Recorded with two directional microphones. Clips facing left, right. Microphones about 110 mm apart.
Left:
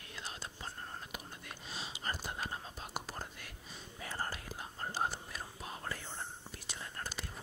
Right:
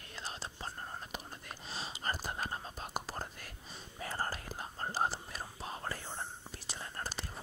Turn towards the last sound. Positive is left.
turn(degrees=-30)  # may be behind; listen again after turning